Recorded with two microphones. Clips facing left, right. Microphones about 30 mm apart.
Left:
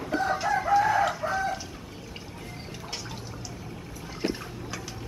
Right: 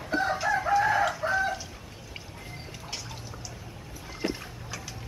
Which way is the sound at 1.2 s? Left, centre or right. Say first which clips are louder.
Right 2 dB; right.